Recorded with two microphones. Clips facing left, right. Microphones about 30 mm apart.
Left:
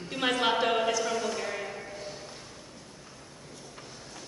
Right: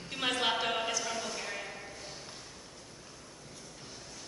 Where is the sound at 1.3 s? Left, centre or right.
Centre.